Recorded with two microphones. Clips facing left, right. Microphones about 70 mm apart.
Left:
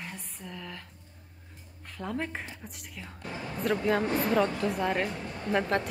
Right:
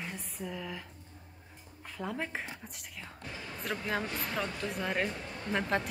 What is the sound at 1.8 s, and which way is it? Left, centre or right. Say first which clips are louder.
A woman's voice: left 3 dB; centre.